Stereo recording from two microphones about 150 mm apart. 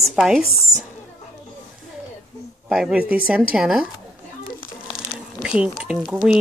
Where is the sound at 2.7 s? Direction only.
5° right (ahead or behind).